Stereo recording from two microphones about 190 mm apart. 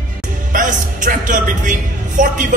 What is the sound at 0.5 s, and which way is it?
Speech, 45° right (ahead or behind).